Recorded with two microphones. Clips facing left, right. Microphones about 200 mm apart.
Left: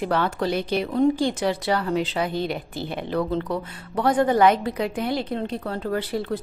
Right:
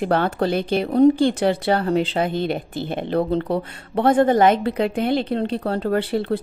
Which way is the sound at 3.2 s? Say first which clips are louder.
Right 3 dB; 35° right (ahead or behind).